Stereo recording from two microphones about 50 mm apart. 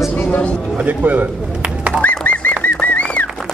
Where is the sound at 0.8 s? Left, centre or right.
Right.